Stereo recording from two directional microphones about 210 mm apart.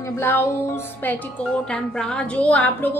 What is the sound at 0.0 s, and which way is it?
Speech, 10° left (ahead or behind).